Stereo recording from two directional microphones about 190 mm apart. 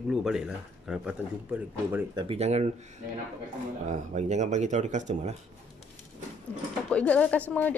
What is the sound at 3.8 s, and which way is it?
Speech, 40° right (ahead or behind).